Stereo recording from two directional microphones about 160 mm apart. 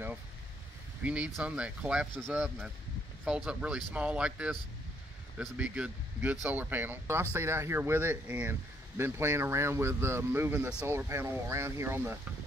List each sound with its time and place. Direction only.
1.0 s speech: 5° right (ahead or behind)